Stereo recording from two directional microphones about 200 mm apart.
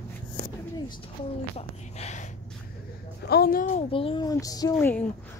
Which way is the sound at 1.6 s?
35° left (ahead or behind).